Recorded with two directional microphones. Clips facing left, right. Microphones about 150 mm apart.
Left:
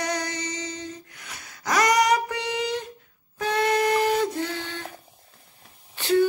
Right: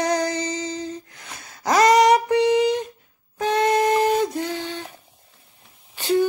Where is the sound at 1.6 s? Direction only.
25° right (ahead or behind).